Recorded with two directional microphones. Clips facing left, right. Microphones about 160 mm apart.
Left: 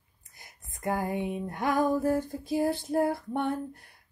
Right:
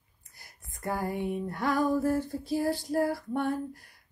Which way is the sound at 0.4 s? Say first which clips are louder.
Left 2 dB; 20° left (ahead or behind).